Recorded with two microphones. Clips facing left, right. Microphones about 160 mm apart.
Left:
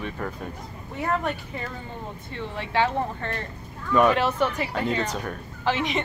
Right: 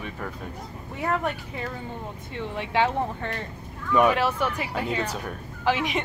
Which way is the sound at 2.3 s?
15° right (ahead or behind).